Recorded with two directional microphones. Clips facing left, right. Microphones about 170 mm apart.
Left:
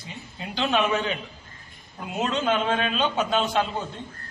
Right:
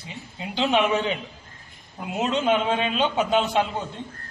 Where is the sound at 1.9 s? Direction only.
15° right (ahead or behind).